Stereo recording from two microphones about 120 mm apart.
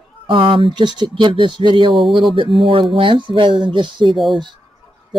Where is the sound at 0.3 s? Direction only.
45° right (ahead or behind).